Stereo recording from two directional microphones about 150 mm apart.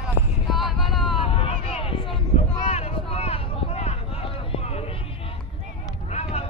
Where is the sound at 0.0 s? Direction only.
Centre (ahead or behind).